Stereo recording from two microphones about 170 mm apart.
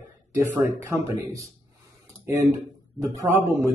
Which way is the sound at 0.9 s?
20° right (ahead or behind).